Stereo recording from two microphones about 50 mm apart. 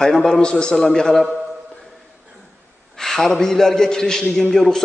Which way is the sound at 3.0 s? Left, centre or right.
Centre.